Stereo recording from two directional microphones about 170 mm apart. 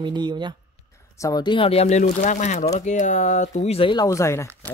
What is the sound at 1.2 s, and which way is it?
Speech, 25° left (ahead or behind).